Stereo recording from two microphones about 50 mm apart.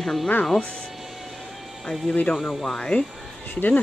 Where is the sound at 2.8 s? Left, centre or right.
Left.